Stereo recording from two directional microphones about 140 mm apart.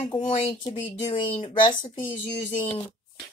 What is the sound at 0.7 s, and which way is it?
Speech, 50° left (ahead or behind).